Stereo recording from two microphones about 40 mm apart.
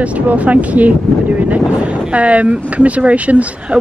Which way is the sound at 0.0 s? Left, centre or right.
Right.